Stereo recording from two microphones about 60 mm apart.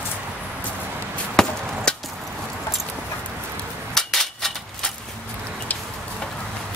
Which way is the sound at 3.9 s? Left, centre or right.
Centre.